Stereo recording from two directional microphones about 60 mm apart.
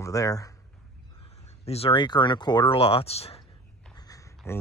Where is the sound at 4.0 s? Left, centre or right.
Left.